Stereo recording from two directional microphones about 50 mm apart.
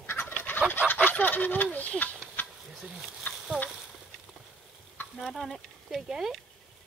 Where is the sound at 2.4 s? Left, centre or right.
Left.